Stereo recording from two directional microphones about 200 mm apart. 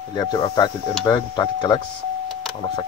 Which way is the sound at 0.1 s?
20° left (ahead or behind).